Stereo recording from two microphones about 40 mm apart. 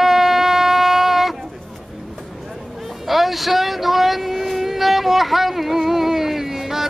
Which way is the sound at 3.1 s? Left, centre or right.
Centre.